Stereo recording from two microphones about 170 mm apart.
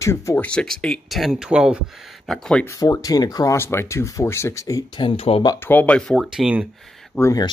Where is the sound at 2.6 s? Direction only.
20° left (ahead or behind); by 5.4 s 35° left (ahead or behind).